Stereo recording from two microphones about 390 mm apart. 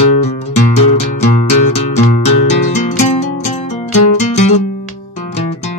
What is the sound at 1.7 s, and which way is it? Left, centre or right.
Music, centre.